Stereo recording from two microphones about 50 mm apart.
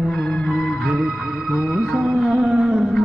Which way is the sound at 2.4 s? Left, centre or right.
Centre.